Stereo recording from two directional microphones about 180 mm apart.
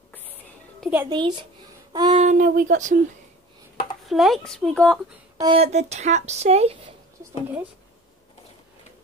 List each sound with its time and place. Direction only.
0.7 s a sound: 5° right (ahead or behind)
1.1 s speech: 25° right (ahead or behind)
2.2 s speech: 45° right (ahead or behind)
4.0 s speech: centre (ahead or behind)
5.4 s speech: 30° right (ahead or behind)